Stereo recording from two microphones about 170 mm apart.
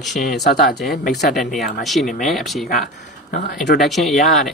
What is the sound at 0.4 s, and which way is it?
Speech, 60° left (ahead or behind).